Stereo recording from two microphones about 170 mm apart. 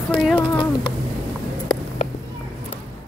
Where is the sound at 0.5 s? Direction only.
25° left (ahead or behind).